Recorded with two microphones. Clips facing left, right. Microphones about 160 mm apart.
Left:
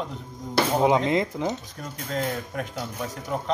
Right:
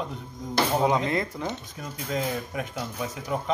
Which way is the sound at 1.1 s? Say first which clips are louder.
Left 4 dB; 20° left (ahead or behind).